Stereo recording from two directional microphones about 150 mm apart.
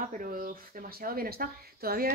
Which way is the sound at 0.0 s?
65° right (ahead or behind).